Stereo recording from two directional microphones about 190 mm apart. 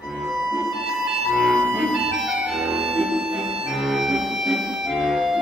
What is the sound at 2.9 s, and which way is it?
Music, centre (ahead or behind).